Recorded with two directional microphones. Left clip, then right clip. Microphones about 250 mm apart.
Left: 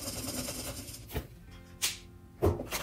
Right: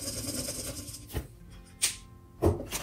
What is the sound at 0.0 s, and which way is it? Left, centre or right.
Vehicle, centre.